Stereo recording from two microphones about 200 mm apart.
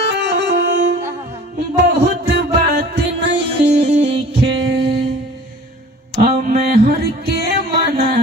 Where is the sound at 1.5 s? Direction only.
55° right (ahead or behind).